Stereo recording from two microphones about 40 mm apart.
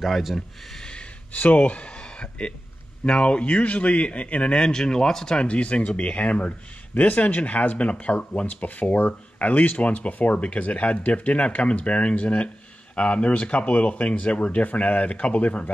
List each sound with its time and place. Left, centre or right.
0.0 s speech: centre
1.3 s a man's voice: left; by 5.4 s centre
5.4 s speech: left